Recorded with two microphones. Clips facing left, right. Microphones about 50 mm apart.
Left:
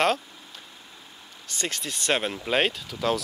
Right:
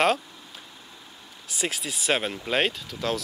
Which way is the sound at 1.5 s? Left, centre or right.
Centre.